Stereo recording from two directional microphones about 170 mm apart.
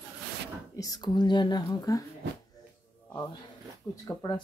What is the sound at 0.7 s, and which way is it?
Speech, 20° left (ahead or behind).